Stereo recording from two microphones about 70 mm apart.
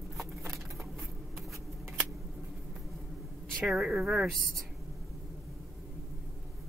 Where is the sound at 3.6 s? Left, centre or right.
Centre.